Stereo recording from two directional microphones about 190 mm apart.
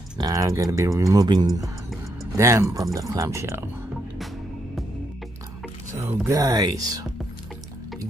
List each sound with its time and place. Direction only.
0.2 s speech: 20° right (ahead or behind)
5.9 s speech: 15° right (ahead or behind)